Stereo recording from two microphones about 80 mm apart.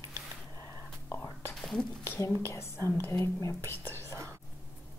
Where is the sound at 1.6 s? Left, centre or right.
Centre.